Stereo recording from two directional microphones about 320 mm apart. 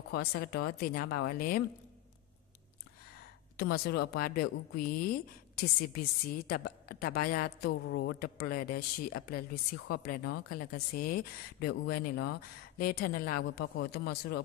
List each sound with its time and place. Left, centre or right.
0.1 s a woman's voice: left
3.5 s a woman's voice: left